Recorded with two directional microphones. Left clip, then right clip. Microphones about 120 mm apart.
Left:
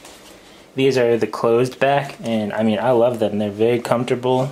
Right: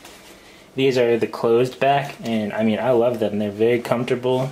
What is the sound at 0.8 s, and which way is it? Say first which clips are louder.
Speech: left 1 dB; 20° left (ahead or behind).